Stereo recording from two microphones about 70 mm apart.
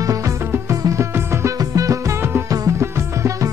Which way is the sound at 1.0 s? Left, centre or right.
Right.